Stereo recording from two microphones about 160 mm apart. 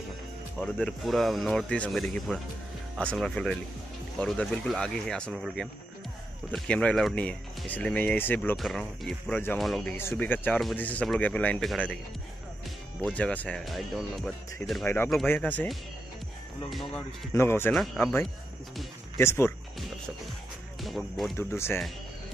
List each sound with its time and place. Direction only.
0.6 s speech: 5° left (ahead or behind)
8.5 s speech: centre (ahead or behind)
9.3 s speech: 10° left (ahead or behind)
9.6 s speech: centre (ahead or behind)
9.9 s speech: 10° left (ahead or behind)
13.1 s speech: 10° left (ahead or behind)
17.3 s speech: 15° left (ahead or behind)
20.8 s speech: centre (ahead or behind)
21.4 s speech: 15° left (ahead or behind)